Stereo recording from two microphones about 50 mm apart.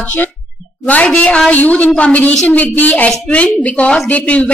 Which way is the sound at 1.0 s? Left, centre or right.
Left.